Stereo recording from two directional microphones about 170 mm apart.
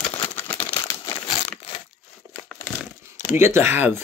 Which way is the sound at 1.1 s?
30° left (ahead or behind).